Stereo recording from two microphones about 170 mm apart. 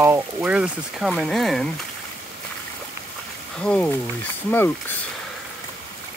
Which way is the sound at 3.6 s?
5° left (ahead or behind).